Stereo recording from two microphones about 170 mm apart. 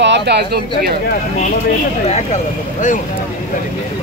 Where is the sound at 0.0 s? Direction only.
85° right; by 0.9 s 70° right (ahead or behind).